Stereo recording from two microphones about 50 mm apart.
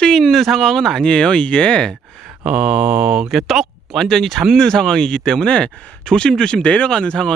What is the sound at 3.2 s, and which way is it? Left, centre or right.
Speech, centre.